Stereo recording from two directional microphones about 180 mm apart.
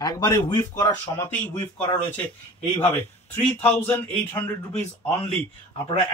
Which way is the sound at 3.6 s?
10° left (ahead or behind).